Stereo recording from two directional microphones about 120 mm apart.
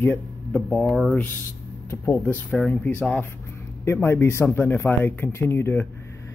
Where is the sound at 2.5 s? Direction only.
5° left (ahead or behind).